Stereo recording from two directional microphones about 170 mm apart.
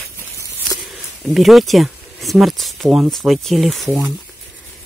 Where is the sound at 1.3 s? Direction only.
Centre (ahead or behind).